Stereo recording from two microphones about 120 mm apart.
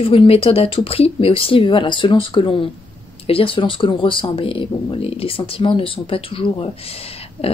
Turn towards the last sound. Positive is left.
turn(degrees=55)  # may be behind; listen again after turning